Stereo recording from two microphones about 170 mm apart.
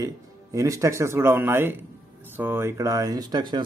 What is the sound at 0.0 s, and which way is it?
A man's voice, 20° right (ahead or behind).